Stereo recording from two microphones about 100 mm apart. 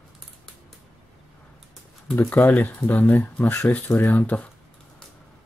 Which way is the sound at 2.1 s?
15° left (ahead or behind).